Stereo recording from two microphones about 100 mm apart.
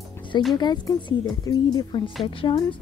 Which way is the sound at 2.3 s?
60° left (ahead or behind).